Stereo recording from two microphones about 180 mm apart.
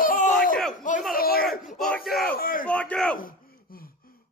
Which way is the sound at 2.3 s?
55° left (ahead or behind).